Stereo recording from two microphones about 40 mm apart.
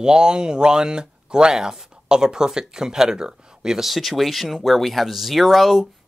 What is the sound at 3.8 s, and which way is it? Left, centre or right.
Speech, centre.